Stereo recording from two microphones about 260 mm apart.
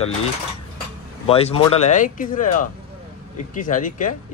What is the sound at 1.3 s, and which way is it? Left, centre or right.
Speech, left.